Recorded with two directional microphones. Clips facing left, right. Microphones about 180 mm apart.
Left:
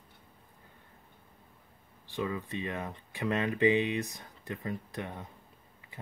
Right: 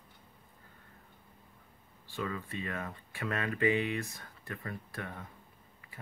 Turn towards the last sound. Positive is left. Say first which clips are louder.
# left 3 dB
turn(degrees=20)  # may be behind; listen again after turning